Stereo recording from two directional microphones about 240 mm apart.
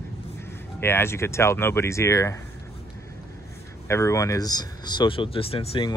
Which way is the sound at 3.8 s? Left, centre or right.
Centre.